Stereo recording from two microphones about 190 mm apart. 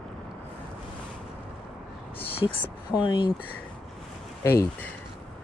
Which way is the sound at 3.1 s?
25° left (ahead or behind).